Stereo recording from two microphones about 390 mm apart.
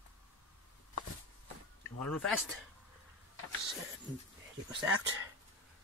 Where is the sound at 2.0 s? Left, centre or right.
Centre.